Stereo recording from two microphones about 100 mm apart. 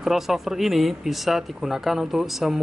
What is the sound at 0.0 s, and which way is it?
Speech, 5° right (ahead or behind).